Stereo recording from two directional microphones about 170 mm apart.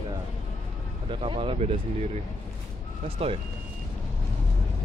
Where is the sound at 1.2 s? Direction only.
30° right (ahead or behind).